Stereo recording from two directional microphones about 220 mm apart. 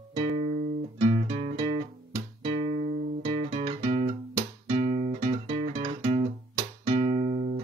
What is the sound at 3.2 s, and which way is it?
Music, 25° right (ahead or behind).